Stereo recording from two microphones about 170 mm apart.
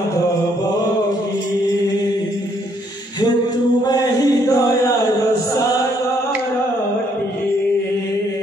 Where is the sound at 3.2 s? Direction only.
25° left (ahead or behind).